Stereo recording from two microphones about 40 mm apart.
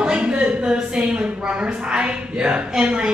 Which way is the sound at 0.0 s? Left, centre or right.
Right.